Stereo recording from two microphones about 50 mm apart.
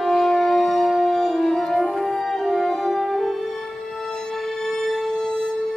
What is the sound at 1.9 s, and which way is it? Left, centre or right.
Music, centre.